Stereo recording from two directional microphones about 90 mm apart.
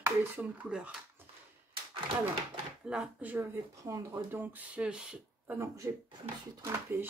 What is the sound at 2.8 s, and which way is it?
Speech, 5° right (ahead or behind).